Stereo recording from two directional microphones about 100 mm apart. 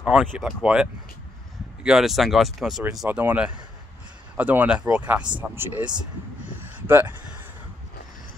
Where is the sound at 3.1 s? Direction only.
15° right (ahead or behind).